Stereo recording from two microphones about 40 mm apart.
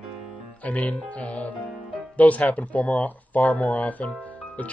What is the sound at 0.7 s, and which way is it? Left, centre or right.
Speech, left.